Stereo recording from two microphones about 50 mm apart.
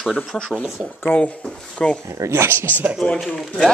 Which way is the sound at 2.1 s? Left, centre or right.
Right.